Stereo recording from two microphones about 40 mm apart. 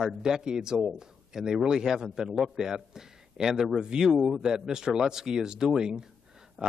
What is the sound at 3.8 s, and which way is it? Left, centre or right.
Speech, centre.